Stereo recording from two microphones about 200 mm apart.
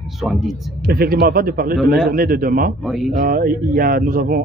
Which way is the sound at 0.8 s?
50° right (ahead or behind).